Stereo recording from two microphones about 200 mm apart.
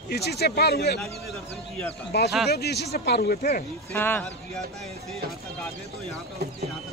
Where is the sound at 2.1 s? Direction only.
55° left (ahead or behind).